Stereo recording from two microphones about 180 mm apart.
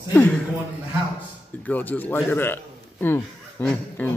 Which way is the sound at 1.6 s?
10° left (ahead or behind).